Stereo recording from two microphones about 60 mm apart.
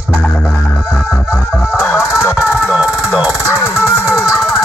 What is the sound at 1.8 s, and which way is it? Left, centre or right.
Fowl, left.